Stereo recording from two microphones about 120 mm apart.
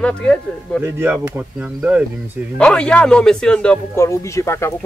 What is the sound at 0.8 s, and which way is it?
A man's voice, 20° right (ahead or behind).